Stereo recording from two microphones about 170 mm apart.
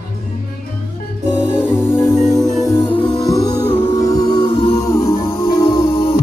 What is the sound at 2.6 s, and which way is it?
Music, 15° left (ahead or behind).